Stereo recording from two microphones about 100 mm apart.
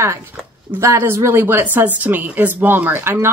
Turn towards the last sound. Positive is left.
turn(degrees=-25)  # may be behind; listen again after turning